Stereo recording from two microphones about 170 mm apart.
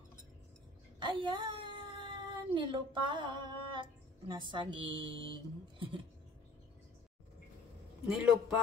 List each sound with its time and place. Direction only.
1.0 s speech: 30° right (ahead or behind)
8.1 s a man's voice: 5° right (ahead or behind)